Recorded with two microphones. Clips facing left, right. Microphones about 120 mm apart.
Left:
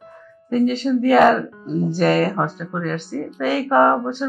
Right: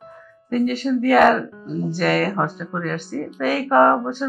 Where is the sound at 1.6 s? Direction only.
30° left (ahead or behind).